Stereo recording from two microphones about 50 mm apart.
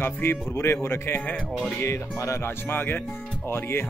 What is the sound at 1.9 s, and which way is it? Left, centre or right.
Music, left.